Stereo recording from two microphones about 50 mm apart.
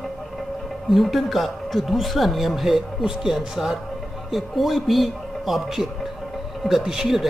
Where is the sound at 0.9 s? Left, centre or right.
Centre.